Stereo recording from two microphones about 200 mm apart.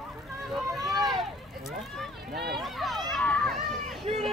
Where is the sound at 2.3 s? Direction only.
50° right (ahead or behind).